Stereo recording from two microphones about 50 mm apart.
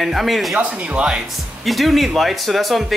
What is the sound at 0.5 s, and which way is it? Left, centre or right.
Speech, right.